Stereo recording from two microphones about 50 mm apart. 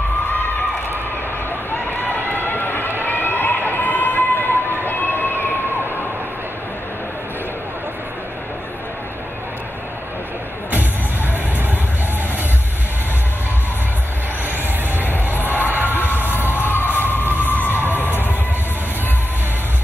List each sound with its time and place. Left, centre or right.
2.0 s run: left
15.0 s crowd: left
16.0 s a sound: left